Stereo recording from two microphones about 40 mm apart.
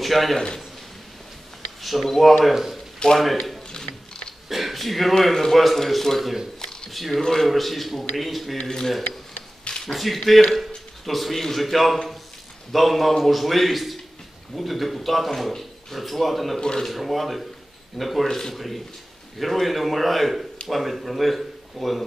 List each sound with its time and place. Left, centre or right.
0.0 s a man's voice: centre
1.8 s a man's voice: centre
3.1 s a man's voice: centre
3.7 s a sound: centre
4.5 s a man's voice: centre
6.6 s a sound: left
6.9 s speech: centre
8.6 s a man's voice: centre
9.7 s a sound: centre
9.9 s speech: centre